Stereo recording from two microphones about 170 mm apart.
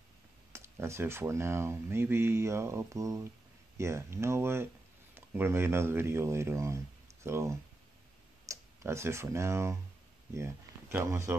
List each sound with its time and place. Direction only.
0.5 s speech: 15° right (ahead or behind)